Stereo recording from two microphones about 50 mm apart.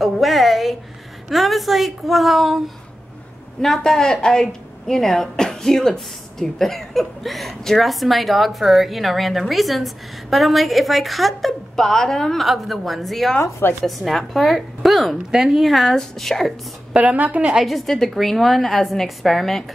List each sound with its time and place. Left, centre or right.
0.0 s a sound: centre
1.3 s a woman's voice: centre
3.6 s a woman's voice: centre
12.4 s a woman's voice: centre
16.9 s a woman's voice: right
17.6 s a woman's voice: centre